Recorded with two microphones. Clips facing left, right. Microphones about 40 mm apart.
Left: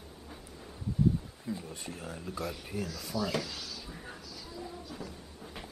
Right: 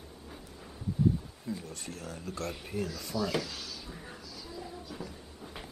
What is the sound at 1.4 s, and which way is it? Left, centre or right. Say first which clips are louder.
Speech: even; centre.